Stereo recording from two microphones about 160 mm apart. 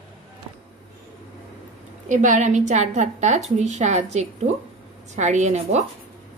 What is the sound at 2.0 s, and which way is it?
A woman's voice, 50° right (ahead or behind).